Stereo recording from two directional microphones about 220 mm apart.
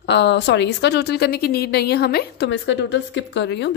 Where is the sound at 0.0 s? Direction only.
50° left (ahead or behind).